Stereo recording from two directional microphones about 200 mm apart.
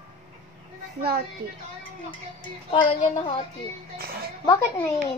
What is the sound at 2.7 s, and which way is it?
Speech, 25° left (ahead or behind).